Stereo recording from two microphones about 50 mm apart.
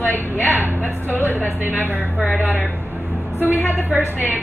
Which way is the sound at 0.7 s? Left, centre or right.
Left.